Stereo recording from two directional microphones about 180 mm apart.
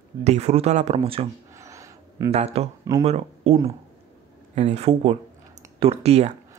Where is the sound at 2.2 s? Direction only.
35° right (ahead or behind).